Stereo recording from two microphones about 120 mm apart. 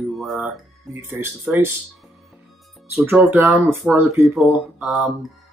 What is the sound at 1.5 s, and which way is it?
Speech, 5° right (ahead or behind).